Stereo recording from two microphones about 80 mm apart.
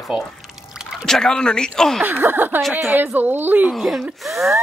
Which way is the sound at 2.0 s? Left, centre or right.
Right.